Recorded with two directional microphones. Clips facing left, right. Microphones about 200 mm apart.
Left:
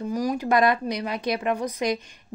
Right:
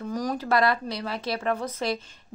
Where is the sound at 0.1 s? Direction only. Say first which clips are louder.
Left 2 dB; 10° left (ahead or behind).